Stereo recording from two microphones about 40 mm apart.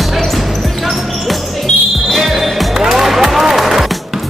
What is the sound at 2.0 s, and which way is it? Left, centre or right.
Music, centre.